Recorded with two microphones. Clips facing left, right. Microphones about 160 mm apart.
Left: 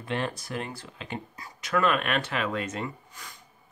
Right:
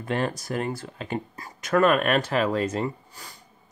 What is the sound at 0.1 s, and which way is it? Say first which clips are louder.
Speech: right 4 dB; 40° right (ahead or behind).